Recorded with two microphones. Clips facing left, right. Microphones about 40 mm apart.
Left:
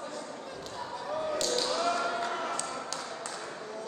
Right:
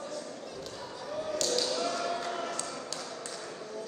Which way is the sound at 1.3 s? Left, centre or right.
Left.